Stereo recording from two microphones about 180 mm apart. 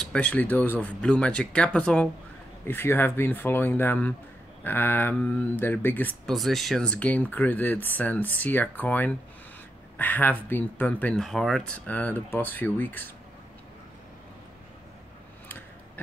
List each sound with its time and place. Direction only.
0.0 s speech: 5° left (ahead or behind)